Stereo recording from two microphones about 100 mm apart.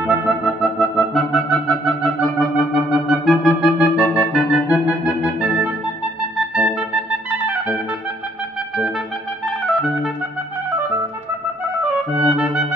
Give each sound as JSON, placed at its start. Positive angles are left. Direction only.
{"t": 0.1, "sound": "music", "side_deg": -5}
{"t": 2.2, "sound": "wind instrument", "side_deg": 0}
{"t": 2.5, "sound": "wind instrument", "side_deg": -10}
{"t": 3.1, "sound": "clarinet", "side_deg": 0}
{"t": 5.2, "sound": "music", "side_deg": -5}
{"t": 9.7, "sound": "clarinet", "side_deg": 0}
{"t": 12.2, "sound": "clarinet", "side_deg": -10}